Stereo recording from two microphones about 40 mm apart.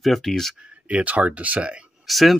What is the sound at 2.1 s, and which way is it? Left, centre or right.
Speech, centre.